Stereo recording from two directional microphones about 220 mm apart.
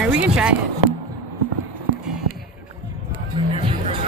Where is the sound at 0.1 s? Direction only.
5° right (ahead or behind).